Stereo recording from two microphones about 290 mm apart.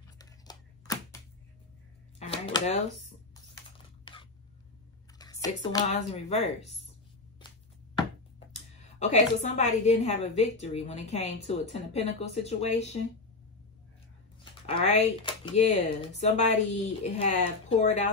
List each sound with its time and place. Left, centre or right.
0.2 s a sound: centre
3.7 s computer keyboard: centre
5.2 s speech: centre
5.9 s speech: left
9.0 s speech: left
14.4 s speech: centre